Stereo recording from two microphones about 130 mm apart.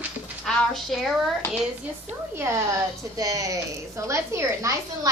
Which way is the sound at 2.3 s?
20° right (ahead or behind).